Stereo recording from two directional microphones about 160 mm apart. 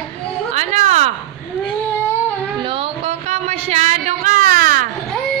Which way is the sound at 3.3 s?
45° right (ahead or behind).